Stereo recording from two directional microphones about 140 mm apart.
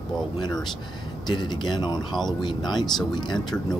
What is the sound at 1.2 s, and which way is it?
Speech, 30° left (ahead or behind).